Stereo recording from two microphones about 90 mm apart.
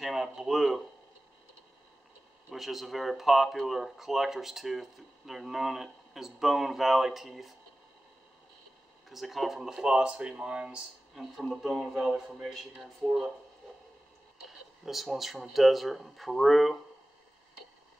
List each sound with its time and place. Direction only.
0.0 s speech: 5° right (ahead or behind)
2.5 s speech: centre (ahead or behind)
9.1 s speech: centre (ahead or behind)
14.9 s speech: centre (ahead or behind)